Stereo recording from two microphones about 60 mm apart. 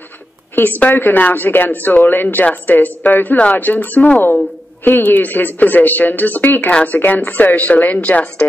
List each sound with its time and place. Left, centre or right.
0.6 s speech: left